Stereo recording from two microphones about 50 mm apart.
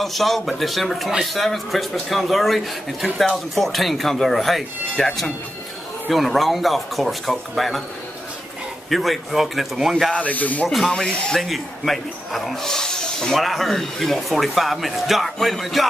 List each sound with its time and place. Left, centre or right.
0.0 s speech: centre
8.9 s speech: centre
10.1 s speech: left
10.9 s speech: centre
11.3 s speech: centre
13.4 s speech: centre